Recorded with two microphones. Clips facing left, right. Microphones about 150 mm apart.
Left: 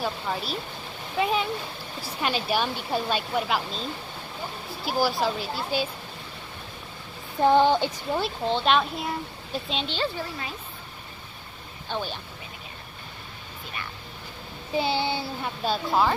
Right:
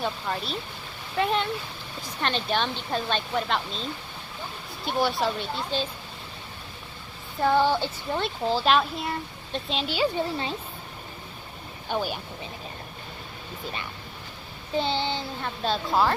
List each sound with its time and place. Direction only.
0.0 s speech: 5° left (ahead or behind)
4.8 s speech: centre (ahead or behind)
7.4 s speech: 20° left (ahead or behind)
8.2 s speech: centre (ahead or behind)
10.1 s speech: 30° right (ahead or behind)
11.9 s speech: 10° right (ahead or behind)
14.8 s speech: 10° left (ahead or behind)